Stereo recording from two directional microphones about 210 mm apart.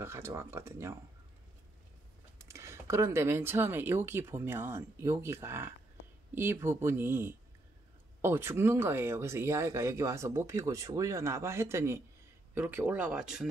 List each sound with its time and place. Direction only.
0.0 s speech: 10° right (ahead or behind)
2.3 s speech: 15° right (ahead or behind)